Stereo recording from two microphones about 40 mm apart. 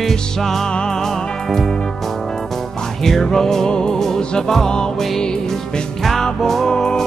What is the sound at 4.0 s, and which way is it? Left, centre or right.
Music, centre.